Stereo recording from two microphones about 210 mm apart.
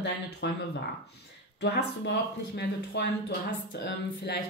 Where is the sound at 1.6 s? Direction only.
55° left (ahead or behind).